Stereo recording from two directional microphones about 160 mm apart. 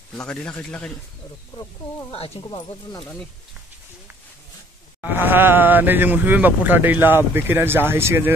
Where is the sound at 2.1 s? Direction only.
35° left (ahead or behind).